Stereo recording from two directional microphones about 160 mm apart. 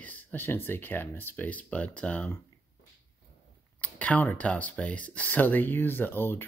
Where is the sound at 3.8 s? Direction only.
10° left (ahead or behind).